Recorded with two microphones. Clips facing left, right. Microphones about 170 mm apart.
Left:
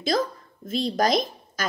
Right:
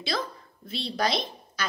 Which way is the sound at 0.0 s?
45° left (ahead or behind).